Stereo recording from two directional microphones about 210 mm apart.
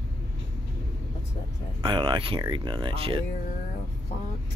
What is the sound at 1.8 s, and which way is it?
Speech, 20° right (ahead or behind).